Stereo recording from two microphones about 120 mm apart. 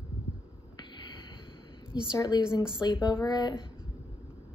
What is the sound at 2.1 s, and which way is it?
Speech, 35° left (ahead or behind).